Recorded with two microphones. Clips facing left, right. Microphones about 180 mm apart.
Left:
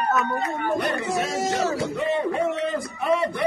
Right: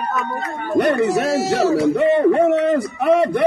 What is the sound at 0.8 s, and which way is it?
Speech, 65° right (ahead or behind).